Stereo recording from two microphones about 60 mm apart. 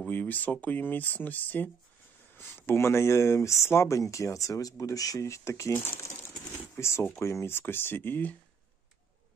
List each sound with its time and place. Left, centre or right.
0.1 s speech: left
3.3 s speech: left
6.8 s speech: left